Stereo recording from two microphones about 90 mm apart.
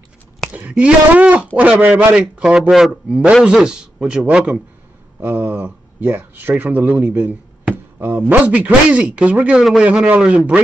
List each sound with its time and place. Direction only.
0.5 s speech: 15° right (ahead or behind)
5.2 s speech: 25° right (ahead or behind)